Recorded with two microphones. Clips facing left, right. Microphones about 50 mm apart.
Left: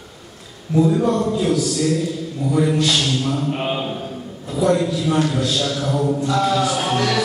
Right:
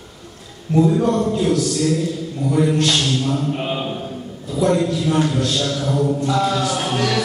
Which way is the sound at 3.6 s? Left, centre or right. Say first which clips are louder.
Even; centre.